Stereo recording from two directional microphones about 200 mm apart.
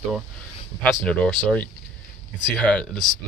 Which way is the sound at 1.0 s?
5° left (ahead or behind).